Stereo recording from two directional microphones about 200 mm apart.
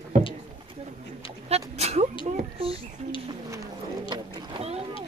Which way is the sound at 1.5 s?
30° right (ahead or behind).